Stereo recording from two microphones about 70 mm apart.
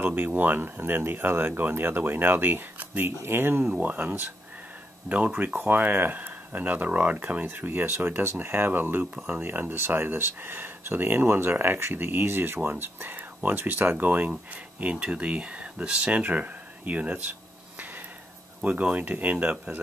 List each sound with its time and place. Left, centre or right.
0.0 s speech: right
9.0 s speech: centre
9.4 s speech: right